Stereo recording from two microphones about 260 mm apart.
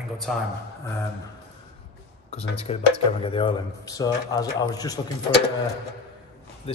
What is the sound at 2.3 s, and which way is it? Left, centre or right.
Speech, left.